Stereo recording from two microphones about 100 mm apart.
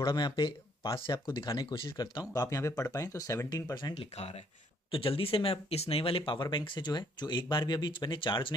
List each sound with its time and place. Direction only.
0.0 s speech: 50° left (ahead or behind)
3.9 s speech: 80° left
4.9 s speech: 65° left (ahead or behind)